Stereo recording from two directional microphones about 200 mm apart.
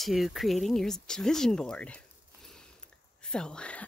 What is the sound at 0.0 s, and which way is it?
Speech, centre (ahead or behind).